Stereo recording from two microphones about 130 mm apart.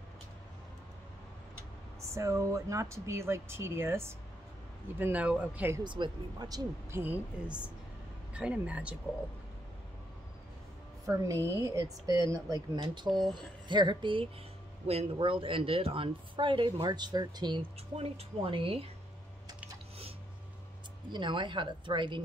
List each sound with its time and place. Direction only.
2.0 s speech: 25° right (ahead or behind)
5.9 s speech: 35° right (ahead or behind)
6.9 s speech: 15° right (ahead or behind)
11.3 s a woman's voice: 15° left (ahead or behind)
11.6 s speech: 25° right (ahead or behind)
17.9 s speech: 50° right (ahead or behind)
21.1 s speech: 35° right (ahead or behind)